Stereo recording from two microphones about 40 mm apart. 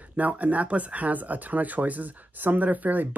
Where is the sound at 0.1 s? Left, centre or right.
Right.